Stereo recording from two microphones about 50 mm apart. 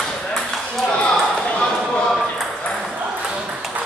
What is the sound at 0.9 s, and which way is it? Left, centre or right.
Ping, left.